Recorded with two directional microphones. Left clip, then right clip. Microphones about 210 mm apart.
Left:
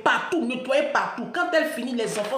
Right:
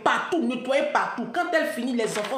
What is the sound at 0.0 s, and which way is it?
A woman's voice, 5° left (ahead or behind).